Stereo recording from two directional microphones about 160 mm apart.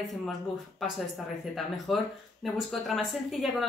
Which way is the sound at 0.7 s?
Centre (ahead or behind).